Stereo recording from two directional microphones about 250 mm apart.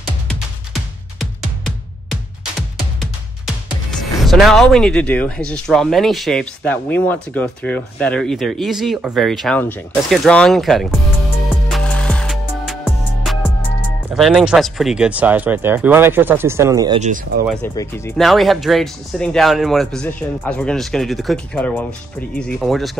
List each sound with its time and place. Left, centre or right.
4.2 s speech: centre
11.7 s music: centre
14.1 s speech: centre
17.0 s speech: right
17.7 s speech: centre